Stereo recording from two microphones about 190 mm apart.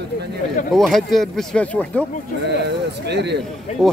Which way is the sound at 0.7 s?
Centre (ahead or behind).